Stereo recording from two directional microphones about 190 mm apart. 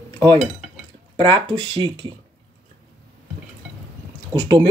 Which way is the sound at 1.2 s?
25° right (ahead or behind).